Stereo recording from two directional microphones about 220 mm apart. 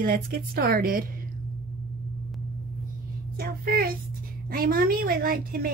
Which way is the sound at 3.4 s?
40° right (ahead or behind).